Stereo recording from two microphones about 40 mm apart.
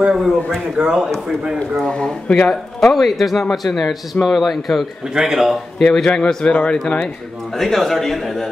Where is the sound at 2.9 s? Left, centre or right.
Centre.